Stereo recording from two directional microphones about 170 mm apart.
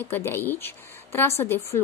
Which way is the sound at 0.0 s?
15° left (ahead or behind).